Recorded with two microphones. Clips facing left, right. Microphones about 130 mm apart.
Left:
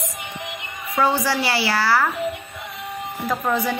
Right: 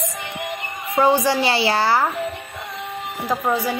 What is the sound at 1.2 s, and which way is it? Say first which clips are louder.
Speech: right 3 dB; 20° right (ahead or behind).